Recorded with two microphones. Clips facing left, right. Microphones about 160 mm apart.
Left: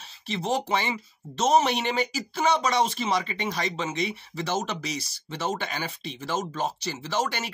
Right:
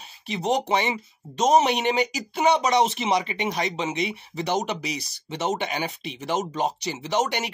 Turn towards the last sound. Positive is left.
turn(degrees=-20)  # may be behind; listen again after turning